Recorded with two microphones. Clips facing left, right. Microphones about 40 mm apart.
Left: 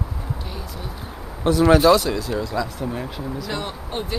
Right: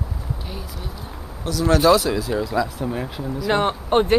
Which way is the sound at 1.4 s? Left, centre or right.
Left.